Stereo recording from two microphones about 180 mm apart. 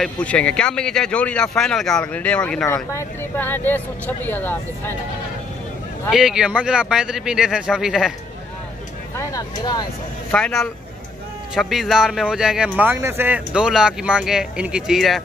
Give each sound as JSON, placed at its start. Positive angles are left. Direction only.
{"t": 0.0, "sound": "speech", "side_deg": 5}
{"t": 6.0, "sound": "speech", "side_deg": -5}
{"t": 9.1, "sound": "speech", "side_deg": 20}
{"t": 10.3, "sound": "speech", "side_deg": 5}